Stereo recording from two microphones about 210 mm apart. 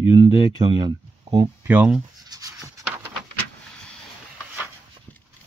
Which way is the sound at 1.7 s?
5° right (ahead or behind).